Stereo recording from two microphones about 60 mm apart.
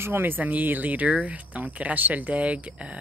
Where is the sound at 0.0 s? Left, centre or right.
Right.